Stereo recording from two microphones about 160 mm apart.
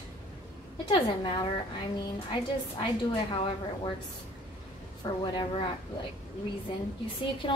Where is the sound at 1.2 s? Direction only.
30° left (ahead or behind).